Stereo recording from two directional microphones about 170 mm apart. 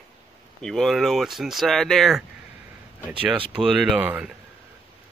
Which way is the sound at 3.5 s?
5° right (ahead or behind).